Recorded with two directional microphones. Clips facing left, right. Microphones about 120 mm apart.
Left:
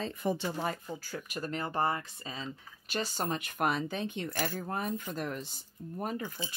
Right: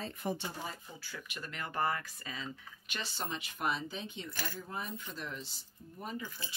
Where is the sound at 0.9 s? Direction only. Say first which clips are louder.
Left 7 dB; 45° left (ahead or behind).